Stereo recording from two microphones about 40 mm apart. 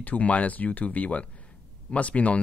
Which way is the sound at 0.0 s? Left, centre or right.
Left.